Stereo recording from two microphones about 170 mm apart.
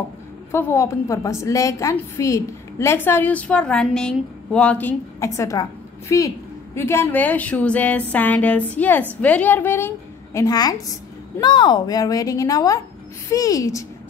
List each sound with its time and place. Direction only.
0.5 s a woman's voice: 15° left (ahead or behind)